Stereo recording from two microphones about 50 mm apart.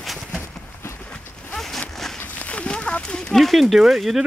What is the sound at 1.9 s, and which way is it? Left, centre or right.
Walk, centre.